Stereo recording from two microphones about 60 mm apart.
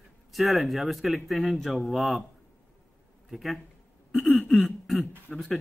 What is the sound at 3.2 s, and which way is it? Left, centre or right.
Speech, centre.